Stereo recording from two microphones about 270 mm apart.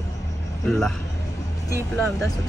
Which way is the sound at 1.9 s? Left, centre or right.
Centre.